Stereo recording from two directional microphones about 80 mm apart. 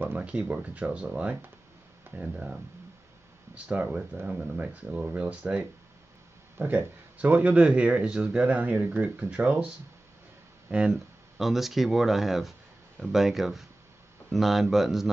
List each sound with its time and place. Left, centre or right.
0.0 s speech: right
10.7 s speech: centre
11.3 s speech: centre